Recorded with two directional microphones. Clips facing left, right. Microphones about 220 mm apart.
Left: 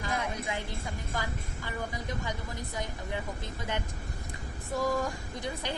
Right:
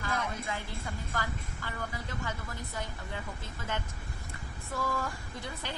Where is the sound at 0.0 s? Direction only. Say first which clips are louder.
Left 2 dB; 15° left (ahead or behind).